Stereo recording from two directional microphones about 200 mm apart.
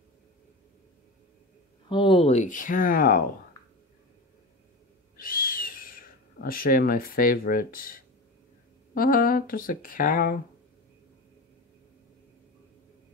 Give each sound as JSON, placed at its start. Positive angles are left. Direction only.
{"t": 1.9, "sound": "speech", "side_deg": 25}
{"t": 5.1, "sound": "owl", "side_deg": 45}
{"t": 8.9, "sound": "speech", "side_deg": 45}